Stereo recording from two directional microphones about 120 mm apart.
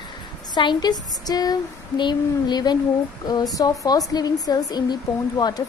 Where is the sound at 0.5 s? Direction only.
35° left (ahead or behind).